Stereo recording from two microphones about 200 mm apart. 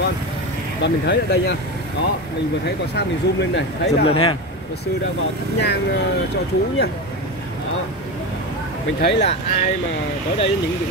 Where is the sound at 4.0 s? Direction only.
25° left (ahead or behind).